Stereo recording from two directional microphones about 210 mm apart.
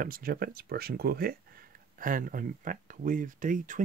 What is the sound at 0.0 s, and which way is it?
Speech, 45° right (ahead or behind).